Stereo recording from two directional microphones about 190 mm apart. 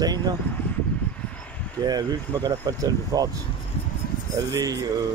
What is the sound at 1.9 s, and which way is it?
Speech, 20° right (ahead or behind).